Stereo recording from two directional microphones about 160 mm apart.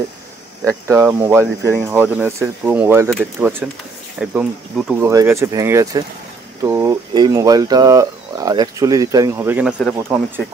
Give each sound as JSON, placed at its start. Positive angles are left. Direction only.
{"t": 0.8, "sound": "speech", "side_deg": -15}